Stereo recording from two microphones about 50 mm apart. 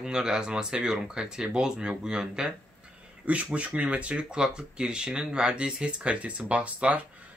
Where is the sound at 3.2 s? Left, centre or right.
Right.